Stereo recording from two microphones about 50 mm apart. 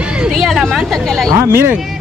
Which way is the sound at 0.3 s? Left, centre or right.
Centre.